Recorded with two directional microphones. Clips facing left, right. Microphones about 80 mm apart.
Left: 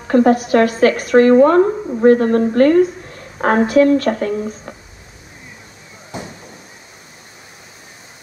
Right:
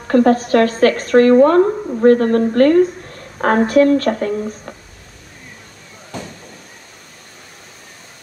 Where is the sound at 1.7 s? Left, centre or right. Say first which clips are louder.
Even; centre.